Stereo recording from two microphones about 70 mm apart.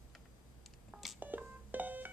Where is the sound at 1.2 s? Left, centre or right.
Right.